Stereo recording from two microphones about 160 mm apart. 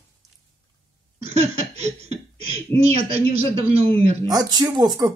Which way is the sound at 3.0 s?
40° right (ahead or behind).